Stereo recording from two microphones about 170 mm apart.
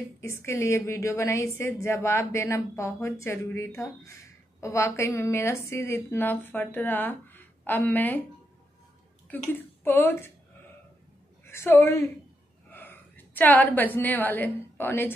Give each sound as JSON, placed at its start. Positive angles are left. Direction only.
{"t": 0.2, "sound": "a woman's voice", "side_deg": 15}
{"t": 9.3, "sound": "a woman's voice", "side_deg": 10}
{"t": 11.4, "sound": "a woman's voice", "side_deg": 15}